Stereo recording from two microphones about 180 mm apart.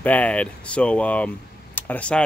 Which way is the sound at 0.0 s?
10° left (ahead or behind).